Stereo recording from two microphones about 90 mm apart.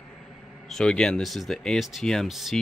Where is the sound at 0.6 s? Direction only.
5° left (ahead or behind).